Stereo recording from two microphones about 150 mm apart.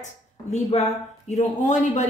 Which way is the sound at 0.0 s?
45° left (ahead or behind).